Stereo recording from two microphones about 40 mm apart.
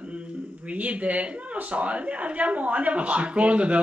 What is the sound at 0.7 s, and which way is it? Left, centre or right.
Speech, right.